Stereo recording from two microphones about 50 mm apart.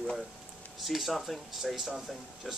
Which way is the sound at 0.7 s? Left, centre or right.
Centre.